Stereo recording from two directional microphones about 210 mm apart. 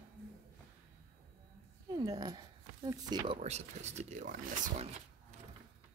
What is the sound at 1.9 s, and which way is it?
Speech, 15° right (ahead or behind).